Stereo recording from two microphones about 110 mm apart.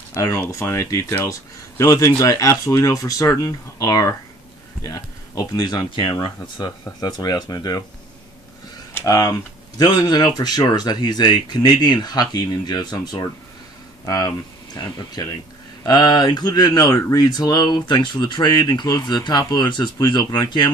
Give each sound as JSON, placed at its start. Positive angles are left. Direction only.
{"t": 0.1, "sound": "speech", "side_deg": 25}
{"t": 8.9, "sound": "speech", "side_deg": 30}